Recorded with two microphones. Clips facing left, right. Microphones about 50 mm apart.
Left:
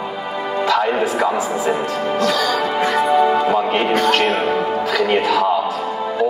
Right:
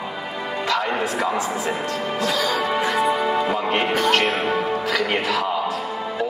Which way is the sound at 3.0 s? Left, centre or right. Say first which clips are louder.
Left 8 dB; centre.